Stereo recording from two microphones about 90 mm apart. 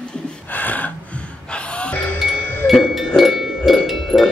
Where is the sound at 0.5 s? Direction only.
20° left (ahead or behind).